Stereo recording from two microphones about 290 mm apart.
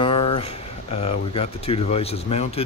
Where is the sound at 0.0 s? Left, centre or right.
Centre.